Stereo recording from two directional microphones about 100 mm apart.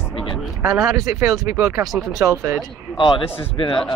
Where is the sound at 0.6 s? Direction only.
35° right (ahead or behind).